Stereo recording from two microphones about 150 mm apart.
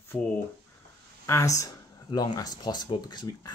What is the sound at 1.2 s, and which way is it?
Speech, 20° left (ahead or behind).